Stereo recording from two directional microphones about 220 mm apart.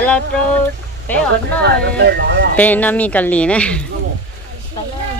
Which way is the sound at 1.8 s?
50° right (ahead or behind).